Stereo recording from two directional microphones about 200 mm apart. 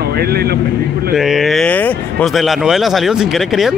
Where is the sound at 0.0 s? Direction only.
50° right (ahead or behind).